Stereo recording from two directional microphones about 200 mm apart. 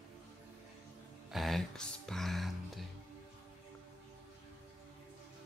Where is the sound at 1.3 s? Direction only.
Centre (ahead or behind).